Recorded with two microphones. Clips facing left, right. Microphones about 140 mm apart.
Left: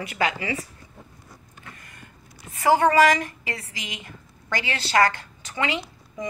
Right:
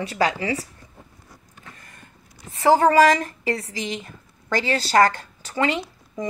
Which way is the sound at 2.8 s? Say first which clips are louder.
Right 2 dB; 35° right (ahead or behind).